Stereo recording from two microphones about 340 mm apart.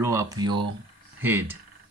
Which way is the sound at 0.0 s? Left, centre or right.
Centre.